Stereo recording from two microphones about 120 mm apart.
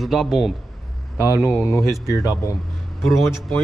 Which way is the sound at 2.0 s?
25° left (ahead or behind).